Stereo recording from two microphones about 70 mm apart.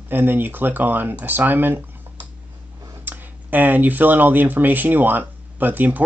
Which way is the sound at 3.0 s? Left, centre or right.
Right.